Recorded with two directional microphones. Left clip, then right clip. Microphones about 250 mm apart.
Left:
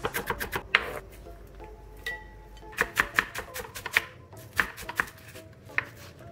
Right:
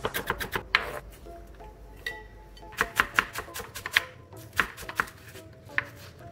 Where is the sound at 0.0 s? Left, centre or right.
Centre.